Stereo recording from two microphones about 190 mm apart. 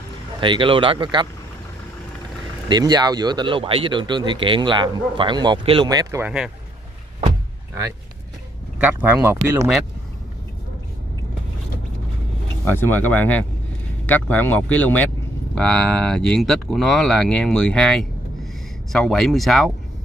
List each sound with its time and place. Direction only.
0.4 s speech: 25° right (ahead or behind)
2.7 s speech: 20° right (ahead or behind)
6.2 s speech: 5° right (ahead or behind)
8.7 s speech: 10° right (ahead or behind)
12.6 s speech: 10° left (ahead or behind)